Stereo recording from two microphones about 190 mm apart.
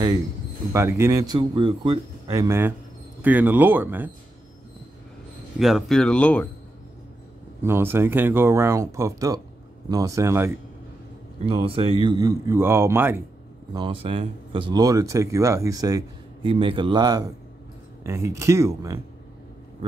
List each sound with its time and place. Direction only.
0.7 s speech: 15° right (ahead or behind)
5.6 s speech: centre (ahead or behind)
7.6 s speech: 10° right (ahead or behind)
11.4 s speech: 30° right (ahead or behind); by 13.2 s 10° right (ahead or behind)
13.7 s speech: 30° right (ahead or behind)